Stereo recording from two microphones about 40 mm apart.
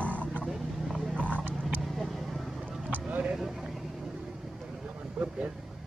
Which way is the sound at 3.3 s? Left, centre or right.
Centre.